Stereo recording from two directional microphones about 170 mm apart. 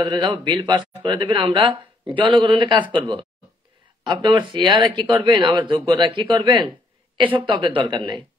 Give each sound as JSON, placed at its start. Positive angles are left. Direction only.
{"t": 0.0, "sound": "speech", "side_deg": -30}